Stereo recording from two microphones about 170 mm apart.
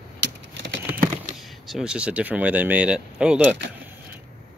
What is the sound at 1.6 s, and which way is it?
Speech, 5° right (ahead or behind).